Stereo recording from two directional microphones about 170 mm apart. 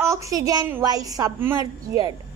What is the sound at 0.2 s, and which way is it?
A child's voice, 20° right (ahead or behind).